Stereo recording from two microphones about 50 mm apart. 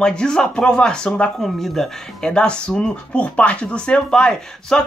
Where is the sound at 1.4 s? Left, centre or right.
Centre.